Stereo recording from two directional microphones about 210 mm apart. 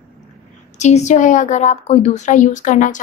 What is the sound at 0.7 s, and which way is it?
Speech, 35° left (ahead or behind).